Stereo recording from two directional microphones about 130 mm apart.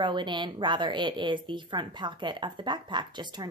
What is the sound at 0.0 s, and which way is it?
A woman's voice, 35° right (ahead or behind).